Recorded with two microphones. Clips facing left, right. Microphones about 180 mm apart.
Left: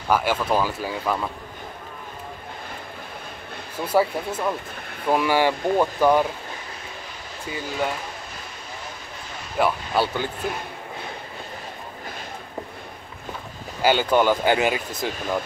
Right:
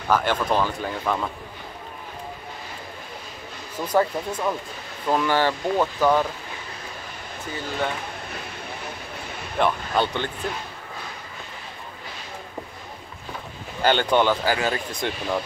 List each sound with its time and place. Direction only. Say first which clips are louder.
0.1 s speech: even; 10° left (ahead or behind)
3.7 s speech: left 1 dB; 10° left (ahead or behind)
9.6 s speech: even; 5° left (ahead or behind)
13.8 s speech: left 1 dB; 5° left (ahead or behind)
14.4 s speech: left 3 dB; 20° left (ahead or behind)
14.9 s speech: even; centre (ahead or behind)